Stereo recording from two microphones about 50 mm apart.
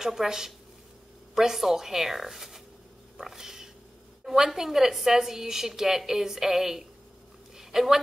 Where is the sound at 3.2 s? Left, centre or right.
Centre.